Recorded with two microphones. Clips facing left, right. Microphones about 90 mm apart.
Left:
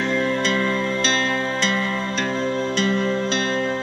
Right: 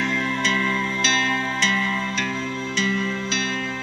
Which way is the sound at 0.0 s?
35° left (ahead or behind).